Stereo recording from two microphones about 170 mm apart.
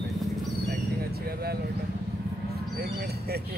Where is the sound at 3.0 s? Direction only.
70° right (ahead or behind).